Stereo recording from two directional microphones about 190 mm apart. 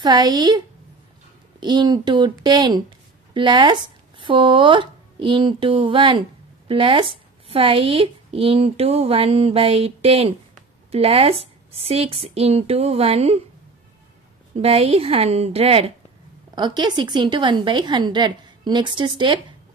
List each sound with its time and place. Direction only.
0.0 s a woman's voice: 20° right (ahead or behind)
14.5 s a woman's voice: 30° right (ahead or behind)